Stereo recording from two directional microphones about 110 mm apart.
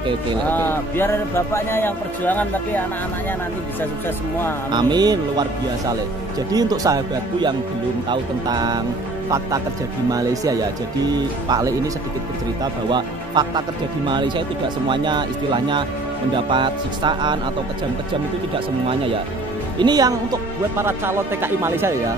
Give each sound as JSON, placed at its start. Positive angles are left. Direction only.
{"t": 0.5, "sound": "speech", "side_deg": 20}
{"t": 4.6, "sound": "speech", "side_deg": -40}
{"t": 8.1, "sound": "speech", "side_deg": -40}
{"t": 10.1, "sound": "speech", "side_deg": -35}
{"t": 12.9, "sound": "speech", "side_deg": -40}
{"t": 19.8, "sound": "speech", "side_deg": -35}
{"t": 20.7, "sound": "speech", "side_deg": -20}